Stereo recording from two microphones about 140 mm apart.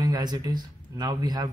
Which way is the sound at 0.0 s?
30° right (ahead or behind).